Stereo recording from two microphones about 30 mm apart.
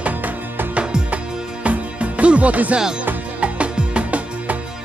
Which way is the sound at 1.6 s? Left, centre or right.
Right.